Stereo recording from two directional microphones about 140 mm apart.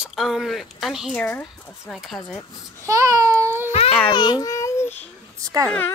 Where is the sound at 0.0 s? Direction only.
Centre (ahead or behind).